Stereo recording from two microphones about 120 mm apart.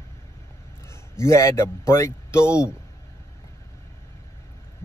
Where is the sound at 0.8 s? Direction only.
20° left (ahead or behind).